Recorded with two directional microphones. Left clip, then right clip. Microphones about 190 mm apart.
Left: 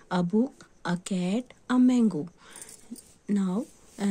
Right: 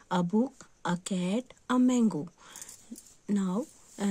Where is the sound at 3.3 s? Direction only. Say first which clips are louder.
Left 2 dB; 40° right (ahead or behind).